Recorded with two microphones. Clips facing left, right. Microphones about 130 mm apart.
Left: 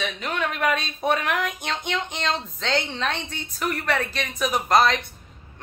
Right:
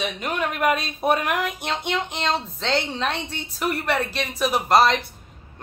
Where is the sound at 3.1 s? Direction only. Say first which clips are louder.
Right 1 dB; 30° right (ahead or behind).